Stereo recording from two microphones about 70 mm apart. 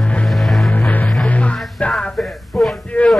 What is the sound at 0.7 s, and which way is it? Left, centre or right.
Music, left.